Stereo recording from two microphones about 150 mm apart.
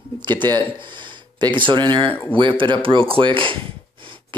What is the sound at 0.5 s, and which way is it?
Speech, 30° right (ahead or behind).